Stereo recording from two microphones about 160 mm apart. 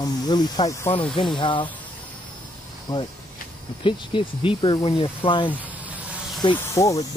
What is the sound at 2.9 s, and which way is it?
Speech, 25° left (ahead or behind).